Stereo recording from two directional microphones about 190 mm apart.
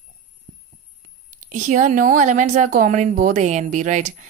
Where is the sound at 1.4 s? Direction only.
40° right (ahead or behind).